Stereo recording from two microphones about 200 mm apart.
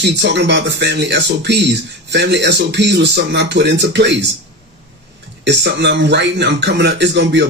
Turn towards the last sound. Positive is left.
turn(degrees=-60)  # may be behind; listen again after turning